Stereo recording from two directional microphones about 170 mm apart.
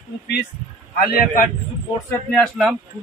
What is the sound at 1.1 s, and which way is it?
Speech, 55° left (ahead or behind).